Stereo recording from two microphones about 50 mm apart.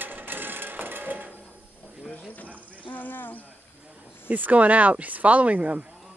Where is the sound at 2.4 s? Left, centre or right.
Right.